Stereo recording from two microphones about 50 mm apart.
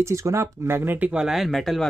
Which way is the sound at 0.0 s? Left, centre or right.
Right.